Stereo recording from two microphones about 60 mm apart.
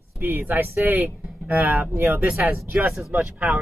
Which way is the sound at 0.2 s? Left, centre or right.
Right.